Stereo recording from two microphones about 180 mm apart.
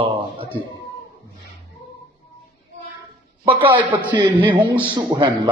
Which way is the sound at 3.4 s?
25° right (ahead or behind).